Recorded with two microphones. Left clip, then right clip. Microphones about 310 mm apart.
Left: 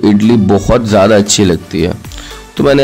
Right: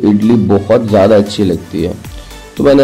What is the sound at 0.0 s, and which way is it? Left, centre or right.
Speech, left.